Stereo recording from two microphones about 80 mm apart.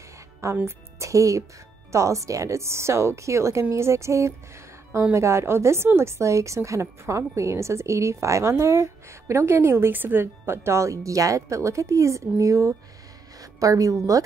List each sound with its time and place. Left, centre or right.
0.4 s a woman's voice: right